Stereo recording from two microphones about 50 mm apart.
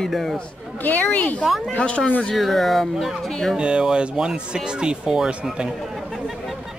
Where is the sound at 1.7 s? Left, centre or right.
Left.